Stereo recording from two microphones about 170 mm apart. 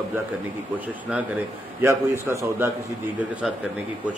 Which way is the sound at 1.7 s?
15° right (ahead or behind).